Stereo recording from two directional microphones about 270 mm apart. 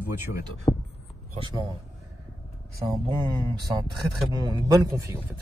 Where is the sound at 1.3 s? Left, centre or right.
Centre.